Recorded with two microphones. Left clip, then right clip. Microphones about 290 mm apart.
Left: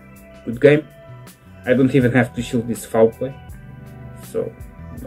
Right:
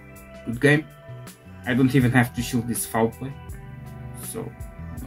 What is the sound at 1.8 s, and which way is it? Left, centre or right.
Speech, centre.